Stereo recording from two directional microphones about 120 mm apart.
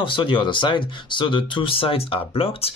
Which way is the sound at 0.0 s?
45° left (ahead or behind).